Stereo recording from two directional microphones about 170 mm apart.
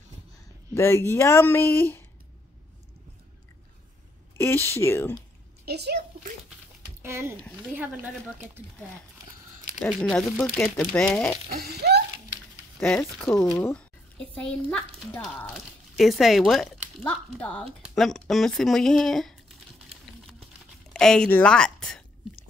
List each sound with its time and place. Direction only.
0.7 s speech: 15° left (ahead or behind)
4.4 s speech: 15° left (ahead or behind)
5.7 s a sound: 75° right (ahead or behind)
7.0 s speech: 15° right (ahead or behind)
9.8 s a child's voice: centre (ahead or behind)
10.5 s speech: 15° left (ahead or behind)
11.5 s a sound: 70° right (ahead or behind)
12.8 s a child's voice: 5° left (ahead or behind)
20.9 s a child's voice: 5° left (ahead or behind)